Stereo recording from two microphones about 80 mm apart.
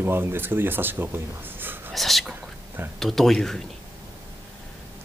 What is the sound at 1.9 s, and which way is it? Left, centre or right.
Speech, centre.